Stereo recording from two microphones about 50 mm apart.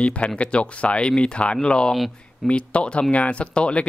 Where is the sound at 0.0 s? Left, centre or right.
Left.